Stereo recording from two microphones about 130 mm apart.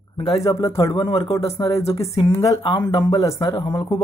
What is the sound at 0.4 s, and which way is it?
Speech, 25° left (ahead or behind).